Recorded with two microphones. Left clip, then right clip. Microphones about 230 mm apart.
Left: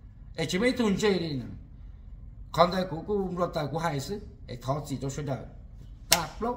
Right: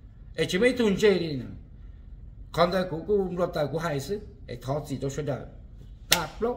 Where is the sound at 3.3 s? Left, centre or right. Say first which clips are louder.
Right 3 dB; centre.